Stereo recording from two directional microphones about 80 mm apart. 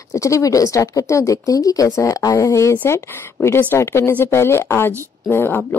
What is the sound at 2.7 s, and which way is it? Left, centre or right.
A woman's voice, left.